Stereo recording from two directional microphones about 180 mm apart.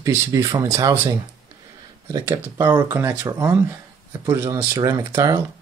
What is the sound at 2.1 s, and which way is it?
Speech, 15° right (ahead or behind).